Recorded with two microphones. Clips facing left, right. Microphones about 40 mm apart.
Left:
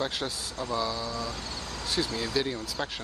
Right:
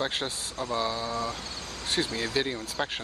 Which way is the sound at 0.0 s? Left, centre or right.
Right.